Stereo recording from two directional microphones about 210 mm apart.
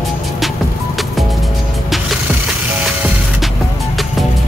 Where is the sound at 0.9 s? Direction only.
Centre (ahead or behind).